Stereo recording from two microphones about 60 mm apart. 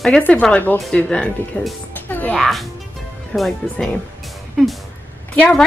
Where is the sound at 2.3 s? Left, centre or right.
Centre.